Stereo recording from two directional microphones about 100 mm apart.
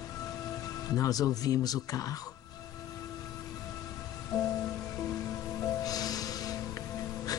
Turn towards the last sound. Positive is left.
turn(degrees=35)  # may be behind; listen again after turning